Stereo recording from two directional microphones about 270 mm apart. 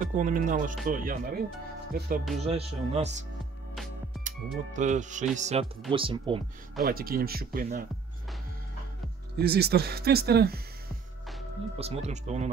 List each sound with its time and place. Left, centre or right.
0.0 s speech: right
4.7 s speech: right
6.8 s speech: right
9.4 s speech: right
11.8 s speech: right